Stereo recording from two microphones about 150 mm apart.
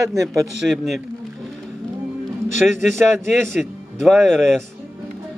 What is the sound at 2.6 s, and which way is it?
Speech, 5° right (ahead or behind).